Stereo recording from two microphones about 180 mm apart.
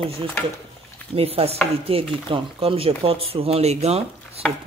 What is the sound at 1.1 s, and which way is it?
Speech, 35° right (ahead or behind).